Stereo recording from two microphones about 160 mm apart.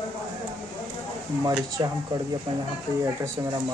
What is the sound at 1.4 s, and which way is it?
Speech, 25° right (ahead or behind).